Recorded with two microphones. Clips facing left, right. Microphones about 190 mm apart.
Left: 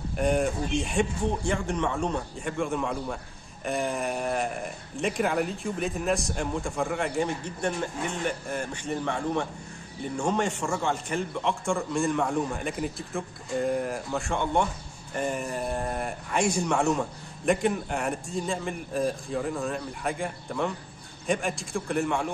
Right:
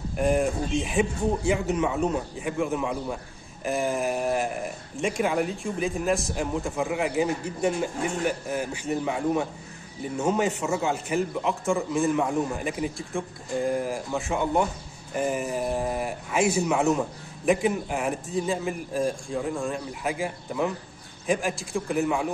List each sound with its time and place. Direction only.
0.1 s speech: centre (ahead or behind)